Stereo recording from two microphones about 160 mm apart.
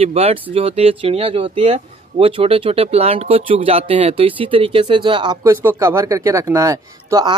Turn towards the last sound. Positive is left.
turn(degrees=-25)  # may be behind; listen again after turning